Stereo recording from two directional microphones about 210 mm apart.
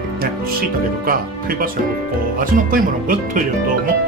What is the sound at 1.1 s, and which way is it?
Speech, 45° right (ahead or behind).